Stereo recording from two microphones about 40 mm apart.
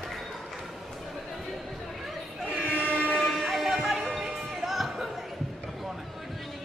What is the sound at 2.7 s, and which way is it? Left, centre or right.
Train, left.